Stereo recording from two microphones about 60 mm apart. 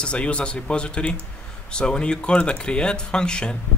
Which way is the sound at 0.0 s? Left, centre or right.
Centre.